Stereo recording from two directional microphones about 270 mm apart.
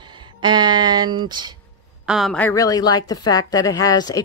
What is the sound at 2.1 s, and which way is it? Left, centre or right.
A woman's voice, centre.